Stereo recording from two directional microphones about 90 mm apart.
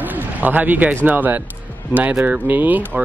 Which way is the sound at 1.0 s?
20° right (ahead or behind).